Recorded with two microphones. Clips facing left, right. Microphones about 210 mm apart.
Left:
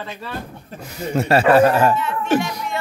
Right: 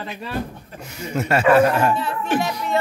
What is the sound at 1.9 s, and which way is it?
Speech, 30° right (ahead or behind).